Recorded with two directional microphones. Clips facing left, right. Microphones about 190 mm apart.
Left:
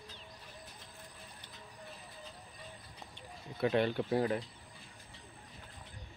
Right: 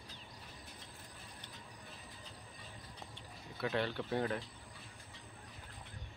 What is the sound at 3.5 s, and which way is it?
Speech, 20° left (ahead or behind).